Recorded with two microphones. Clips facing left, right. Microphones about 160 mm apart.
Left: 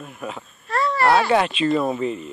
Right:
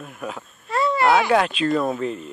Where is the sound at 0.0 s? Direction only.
Centre (ahead or behind).